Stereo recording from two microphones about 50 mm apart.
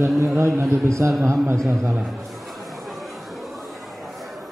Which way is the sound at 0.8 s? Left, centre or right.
Right.